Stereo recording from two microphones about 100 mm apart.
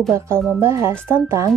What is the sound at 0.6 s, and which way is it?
Speech, 25° right (ahead or behind).